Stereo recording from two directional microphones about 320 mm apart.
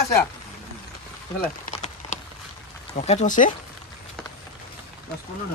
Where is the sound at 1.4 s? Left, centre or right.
Left.